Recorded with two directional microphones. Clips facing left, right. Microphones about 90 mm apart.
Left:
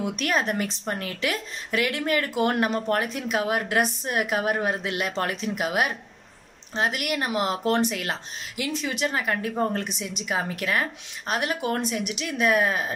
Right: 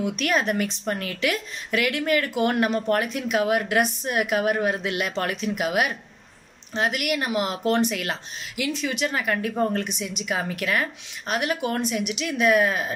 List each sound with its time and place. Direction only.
0.0 s speech: 30° left (ahead or behind)